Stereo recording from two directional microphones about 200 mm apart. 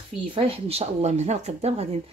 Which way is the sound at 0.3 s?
30° right (ahead or behind).